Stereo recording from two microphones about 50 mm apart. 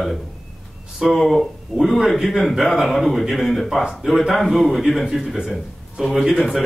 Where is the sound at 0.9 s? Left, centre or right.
Centre.